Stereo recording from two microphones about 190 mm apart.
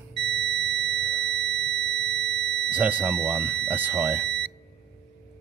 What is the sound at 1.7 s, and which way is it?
Alarm, 60° right (ahead or behind).